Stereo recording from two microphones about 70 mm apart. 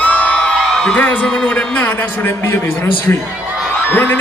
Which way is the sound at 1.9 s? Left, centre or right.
Left.